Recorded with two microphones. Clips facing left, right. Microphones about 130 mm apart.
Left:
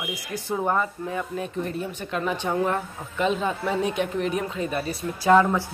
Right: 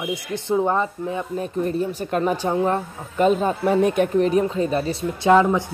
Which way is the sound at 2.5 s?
25° right (ahead or behind).